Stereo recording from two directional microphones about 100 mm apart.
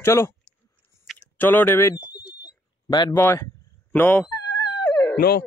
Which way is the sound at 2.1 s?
40° left (ahead or behind).